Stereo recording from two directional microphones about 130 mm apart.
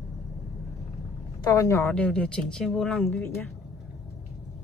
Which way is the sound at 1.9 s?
10° left (ahead or behind).